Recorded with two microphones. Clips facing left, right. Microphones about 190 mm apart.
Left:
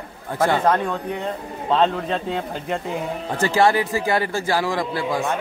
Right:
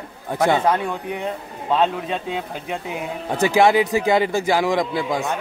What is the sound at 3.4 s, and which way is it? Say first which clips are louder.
A man's voice: right 3 dB; 15° right (ahead or behind).